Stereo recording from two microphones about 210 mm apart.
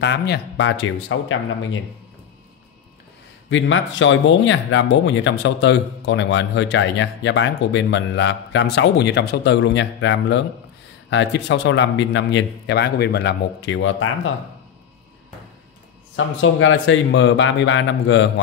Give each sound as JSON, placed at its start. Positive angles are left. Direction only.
{"t": 0.0, "sound": "speech", "side_deg": 55}
{"t": 3.4, "sound": "speech", "side_deg": 60}
{"t": 16.3, "sound": "speech", "side_deg": 70}